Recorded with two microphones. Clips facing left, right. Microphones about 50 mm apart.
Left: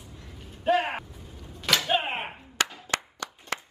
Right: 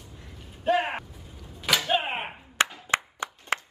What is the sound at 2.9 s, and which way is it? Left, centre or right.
Clapping, right.